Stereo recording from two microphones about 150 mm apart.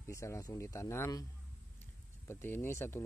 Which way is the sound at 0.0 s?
20° left (ahead or behind).